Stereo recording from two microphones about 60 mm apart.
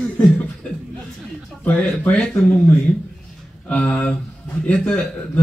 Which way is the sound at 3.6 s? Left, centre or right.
Left.